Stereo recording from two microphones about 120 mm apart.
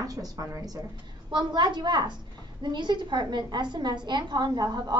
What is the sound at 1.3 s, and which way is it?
A woman's voice, 40° right (ahead or behind).